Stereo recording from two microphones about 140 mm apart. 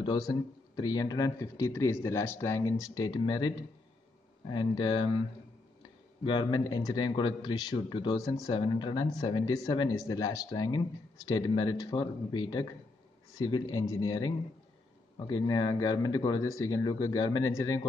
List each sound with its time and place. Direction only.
0.0 s a man's voice: 35° left (ahead or behind)
6.2 s a man's voice: 35° left (ahead or behind)